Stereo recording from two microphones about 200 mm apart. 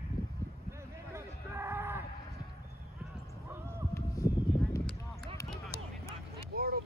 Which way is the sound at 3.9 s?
15° left (ahead or behind).